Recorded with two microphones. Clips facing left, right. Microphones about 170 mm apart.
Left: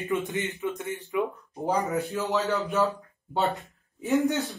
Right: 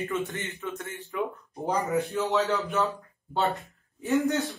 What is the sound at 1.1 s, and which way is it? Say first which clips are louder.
Speech: left 2 dB; centre (ahead or behind).